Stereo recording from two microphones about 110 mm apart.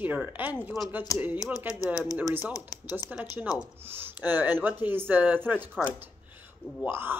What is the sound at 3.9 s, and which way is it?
Speech, 20° right (ahead or behind).